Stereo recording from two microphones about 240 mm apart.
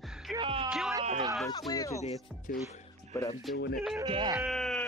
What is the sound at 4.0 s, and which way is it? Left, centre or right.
Speech, centre.